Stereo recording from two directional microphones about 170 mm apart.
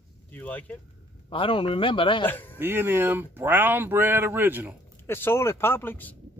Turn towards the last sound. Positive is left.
turn(degrees=10)  # may be behind; listen again after turning